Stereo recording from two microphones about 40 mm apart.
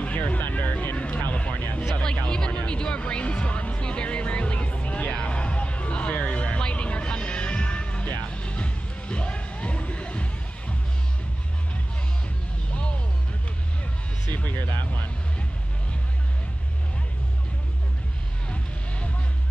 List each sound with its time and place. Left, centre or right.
0.0 s vehicle: left
0.4 s vehicle: left
1.3 s a sound: left
2.2 s music: left
14.3 s music: left